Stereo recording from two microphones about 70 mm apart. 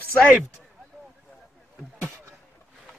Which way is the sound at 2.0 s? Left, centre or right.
Right.